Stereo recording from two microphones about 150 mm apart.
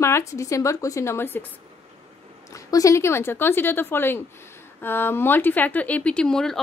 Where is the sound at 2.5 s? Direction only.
20° left (ahead or behind).